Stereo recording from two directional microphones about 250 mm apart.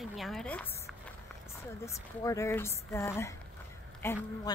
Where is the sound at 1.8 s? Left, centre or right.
Centre.